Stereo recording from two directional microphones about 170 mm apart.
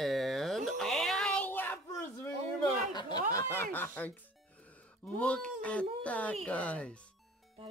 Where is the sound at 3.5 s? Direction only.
10° left (ahead or behind).